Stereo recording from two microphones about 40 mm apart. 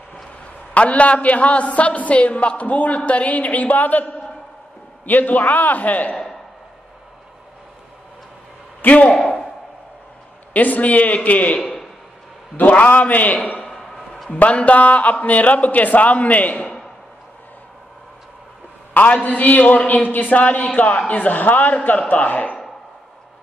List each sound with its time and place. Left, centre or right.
0.7 s a man's voice: left
5.0 s a man's voice: left
8.8 s a man's voice: left
10.5 s a man's voice: left
11.5 s a sound: centre
12.5 s a man's voice: left
13.6 s a sound: centre
14.3 s a man's voice: left
18.9 s a man's voice: left
21.1 s a man's voice: left